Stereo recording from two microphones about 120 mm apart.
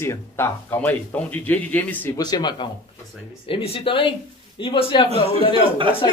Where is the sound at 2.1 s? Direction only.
35° left (ahead or behind).